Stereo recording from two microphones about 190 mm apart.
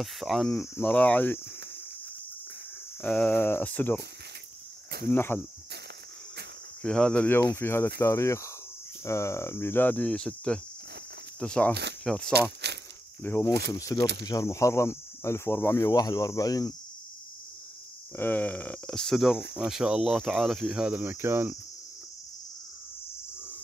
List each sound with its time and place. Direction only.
0.0 s speech: centre (ahead or behind)
3.0 s speech: 5° left (ahead or behind)
5.1 s speech: 10° left (ahead or behind)
6.8 s speech: 5° left (ahead or behind)
12.3 s speech: 60° right (ahead or behind)
13.2 s speech: 10° left (ahead or behind)
13.5 s speech: 60° right (ahead or behind)
13.7 s speech: 15° left (ahead or behind)
18.1 s speech: 10° left (ahead or behind); by 21.5 s 10° right (ahead or behind)